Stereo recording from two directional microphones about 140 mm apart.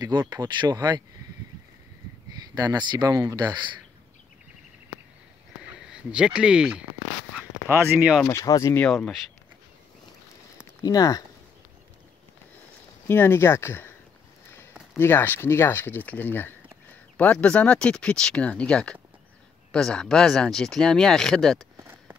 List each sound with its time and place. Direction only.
0.0 s speech: 30° right (ahead or behind)
2.3 s speech: 25° right (ahead or behind)
5.8 s speech: 5° right (ahead or behind)
8.3 s speech: 20° left (ahead or behind)
8.7 s speech: 5° left (ahead or behind)
10.6 s speech: 25° left (ahead or behind)
13.1 s speech: 15° left (ahead or behind)
15.0 s speech: 15° left (ahead or behind)
21.7 s a sound: 15° right (ahead or behind)